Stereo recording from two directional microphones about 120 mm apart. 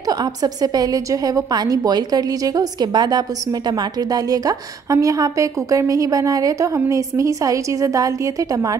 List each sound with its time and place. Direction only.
0.1 s a woman's voice: 35° right (ahead or behind)